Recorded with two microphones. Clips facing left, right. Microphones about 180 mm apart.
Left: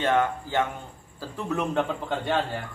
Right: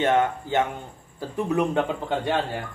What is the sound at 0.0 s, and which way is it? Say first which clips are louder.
A man's voice: right 2 dB; 20° right (ahead or behind).